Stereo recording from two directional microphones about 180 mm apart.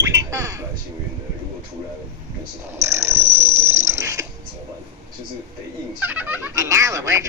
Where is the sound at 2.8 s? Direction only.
15° right (ahead or behind).